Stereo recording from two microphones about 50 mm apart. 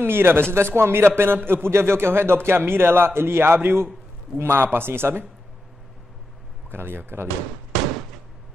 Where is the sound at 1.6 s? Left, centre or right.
Right.